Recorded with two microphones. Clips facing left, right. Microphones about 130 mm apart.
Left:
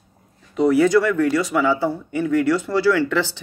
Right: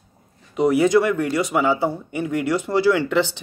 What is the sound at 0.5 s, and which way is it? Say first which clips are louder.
Speech: left 1 dB; 15° right (ahead or behind).